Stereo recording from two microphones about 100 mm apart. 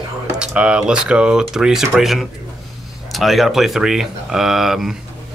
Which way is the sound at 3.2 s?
Centre (ahead or behind).